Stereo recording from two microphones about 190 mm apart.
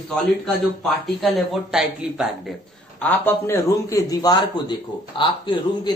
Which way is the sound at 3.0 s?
10° left (ahead or behind).